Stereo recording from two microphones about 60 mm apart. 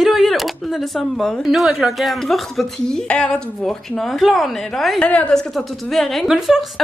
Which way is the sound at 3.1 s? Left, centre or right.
Centre.